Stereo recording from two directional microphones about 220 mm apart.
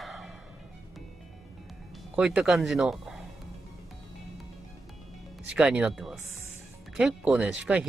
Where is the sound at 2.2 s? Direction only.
5° right (ahead or behind).